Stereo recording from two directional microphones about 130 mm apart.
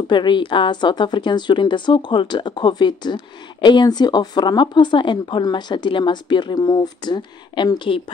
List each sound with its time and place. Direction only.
0.1 s speech: 35° left (ahead or behind)